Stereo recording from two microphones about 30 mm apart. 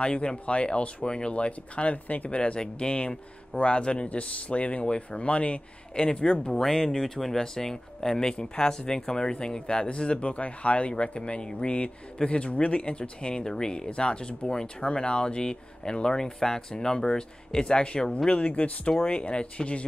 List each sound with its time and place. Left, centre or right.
0.0 s speech: left
2.0 s speech: left
2.3 s speech: left
6.6 s speech: centre; by 10.2 s left
10.2 s speech: left
16.3 s speech: centre
16.7 s speech: left